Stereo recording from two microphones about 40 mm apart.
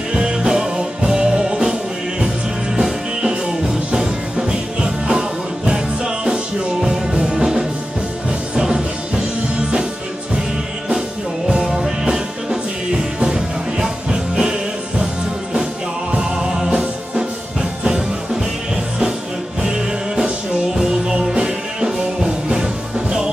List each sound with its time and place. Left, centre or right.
0.1 s music: right
11.4 s music: centre
16.2 s music: centre
19.6 s music: centre